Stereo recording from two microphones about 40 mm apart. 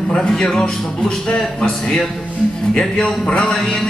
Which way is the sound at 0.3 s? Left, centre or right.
Centre.